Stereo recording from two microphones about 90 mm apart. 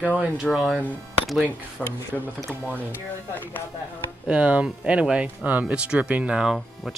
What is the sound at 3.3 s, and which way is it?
Speech, 20° left (ahead or behind).